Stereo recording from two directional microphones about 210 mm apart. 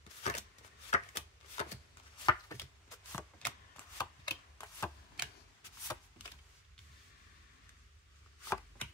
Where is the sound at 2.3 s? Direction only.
15° left (ahead or behind).